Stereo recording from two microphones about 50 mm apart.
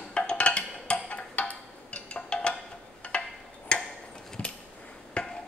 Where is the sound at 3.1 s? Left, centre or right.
Left.